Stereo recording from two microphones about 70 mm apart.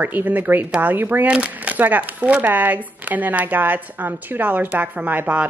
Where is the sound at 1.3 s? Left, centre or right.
Centre.